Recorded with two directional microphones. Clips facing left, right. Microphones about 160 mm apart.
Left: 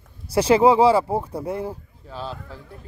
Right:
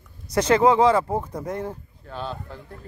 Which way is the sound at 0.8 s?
30° left (ahead or behind).